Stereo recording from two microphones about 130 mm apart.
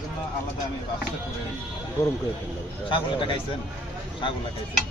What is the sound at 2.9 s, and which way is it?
Speech, 40° left (ahead or behind).